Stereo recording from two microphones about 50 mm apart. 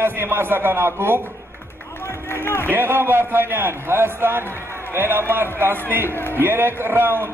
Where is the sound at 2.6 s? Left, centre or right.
Right.